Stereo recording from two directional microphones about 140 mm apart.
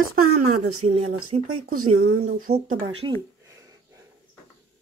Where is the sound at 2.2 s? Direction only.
90° right.